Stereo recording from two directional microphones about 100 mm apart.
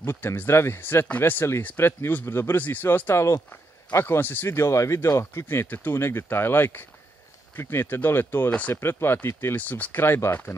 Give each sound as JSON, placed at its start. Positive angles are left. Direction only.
{"t": 0.0, "sound": "speech", "side_deg": 25}